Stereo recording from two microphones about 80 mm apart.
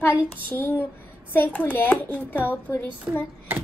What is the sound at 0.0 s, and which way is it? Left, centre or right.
A child's voice, left.